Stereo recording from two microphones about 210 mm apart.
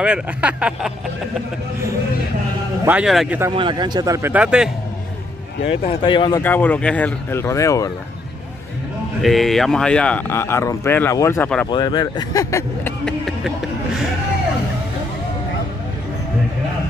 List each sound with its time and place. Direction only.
0.0 s speech: 5° right (ahead or behind)
2.8 s speech: 5° right (ahead or behind)
3.5 s speech: 20° right (ahead or behind); by 4.6 s 5° right (ahead or behind)
5.7 s speech: 25° left (ahead or behind)
6.4 s speech: 10° left (ahead or behind)
9.2 s speech: centre (ahead or behind)
13.0 s a sound: centre (ahead or behind)